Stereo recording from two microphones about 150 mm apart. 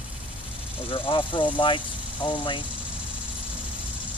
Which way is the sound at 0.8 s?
35° left (ahead or behind).